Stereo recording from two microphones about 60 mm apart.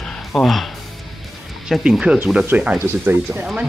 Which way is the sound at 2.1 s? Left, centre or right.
Centre.